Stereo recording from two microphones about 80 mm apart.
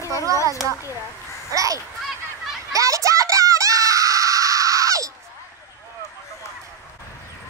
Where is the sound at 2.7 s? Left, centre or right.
Right.